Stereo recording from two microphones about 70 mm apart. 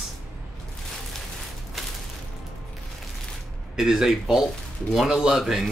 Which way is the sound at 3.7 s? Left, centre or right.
Centre.